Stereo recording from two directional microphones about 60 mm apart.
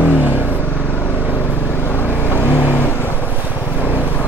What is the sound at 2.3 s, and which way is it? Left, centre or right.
Vehicle, left.